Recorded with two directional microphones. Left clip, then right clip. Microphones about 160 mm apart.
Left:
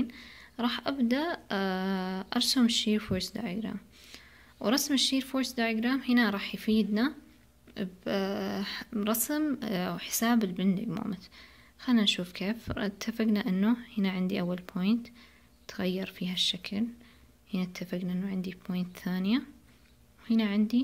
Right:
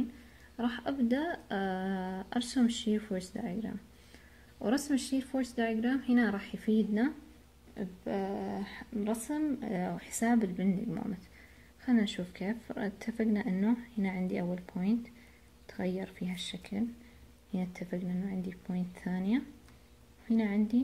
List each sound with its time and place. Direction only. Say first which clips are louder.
0.6 s speech: left 3 dB; 20° left (ahead or behind)
7.7 s a sound: left 4 dB; 35° left (ahead or behind)
8.4 s speech: left 5 dB; 35° left (ahead or behind)
9.8 s a woman's voice: left 3 dB; 20° left (ahead or behind)
16.0 s a woman's voice: left 9 dB; 20° left (ahead or behind)